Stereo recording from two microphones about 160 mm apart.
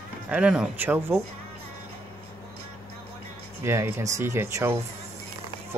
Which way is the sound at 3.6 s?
15° right (ahead or behind).